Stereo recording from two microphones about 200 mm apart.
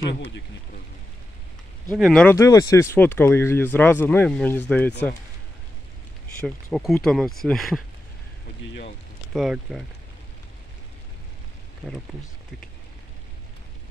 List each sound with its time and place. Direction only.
0.0 s speech: 60° left (ahead or behind)
2.0 s speech: centre (ahead or behind)
2.3 s speech: 15° left (ahead or behind)
6.4 s speech: centre (ahead or behind)
9.3 s speech: centre (ahead or behind)